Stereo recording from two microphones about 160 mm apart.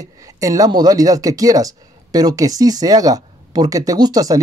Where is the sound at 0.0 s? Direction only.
20° right (ahead or behind).